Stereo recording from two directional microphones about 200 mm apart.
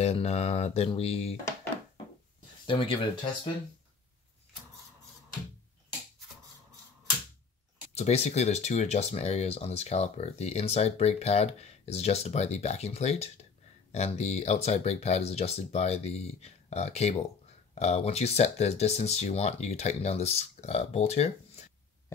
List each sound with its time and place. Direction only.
0.0 s speech: 30° left (ahead or behind)
2.6 s speech: 25° left (ahead or behind)
7.9 s speech: 35° left (ahead or behind)